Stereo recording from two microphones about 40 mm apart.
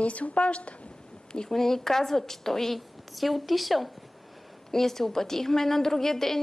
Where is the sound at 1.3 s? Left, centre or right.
Centre.